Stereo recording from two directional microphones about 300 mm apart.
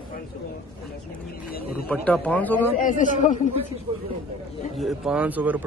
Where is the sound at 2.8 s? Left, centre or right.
Left.